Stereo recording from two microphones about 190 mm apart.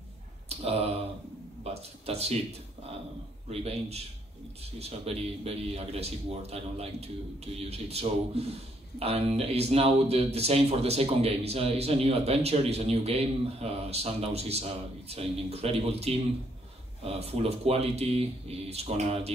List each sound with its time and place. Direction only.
1.6 s speech: 35° right (ahead or behind)
3.4 s speech: 35° right (ahead or behind)